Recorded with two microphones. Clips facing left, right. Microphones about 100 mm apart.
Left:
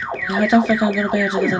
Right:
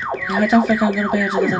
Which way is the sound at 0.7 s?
15° left (ahead or behind).